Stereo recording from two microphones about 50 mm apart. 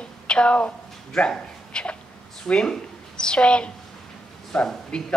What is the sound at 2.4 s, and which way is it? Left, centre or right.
A woman's voice, centre.